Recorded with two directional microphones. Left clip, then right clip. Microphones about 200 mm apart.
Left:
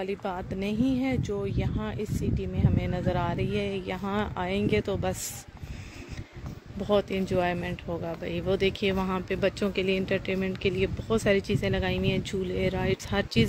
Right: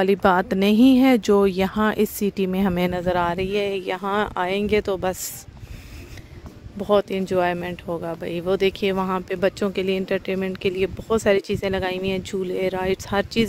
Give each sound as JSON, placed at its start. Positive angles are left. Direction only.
{"t": 0.0, "sound": "speech", "side_deg": -45}
{"t": 6.8, "sound": "speech", "side_deg": -35}